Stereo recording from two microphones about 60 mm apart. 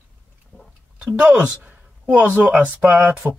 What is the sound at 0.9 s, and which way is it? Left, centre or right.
Speech, centre.